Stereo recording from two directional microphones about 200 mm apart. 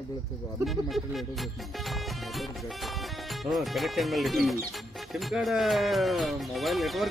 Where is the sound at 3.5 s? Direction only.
Centre (ahead or behind).